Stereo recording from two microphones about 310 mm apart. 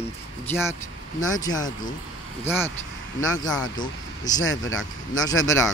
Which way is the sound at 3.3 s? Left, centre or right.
Centre.